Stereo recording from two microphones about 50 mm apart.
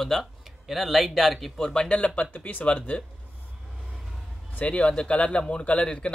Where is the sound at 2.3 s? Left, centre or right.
Left.